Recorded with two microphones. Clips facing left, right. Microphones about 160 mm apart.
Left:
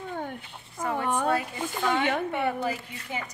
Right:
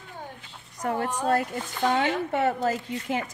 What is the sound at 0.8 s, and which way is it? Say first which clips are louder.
Speech: right 2 dB; 55° right (ahead or behind).